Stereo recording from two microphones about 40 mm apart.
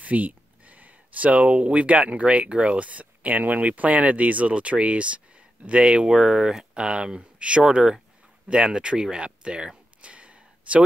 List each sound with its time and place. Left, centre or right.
0.0 s speech: right
6.0 s speech: centre
10.0 s a sound: right